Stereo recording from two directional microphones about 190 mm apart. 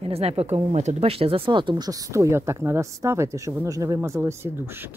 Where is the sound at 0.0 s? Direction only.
30° right (ahead or behind).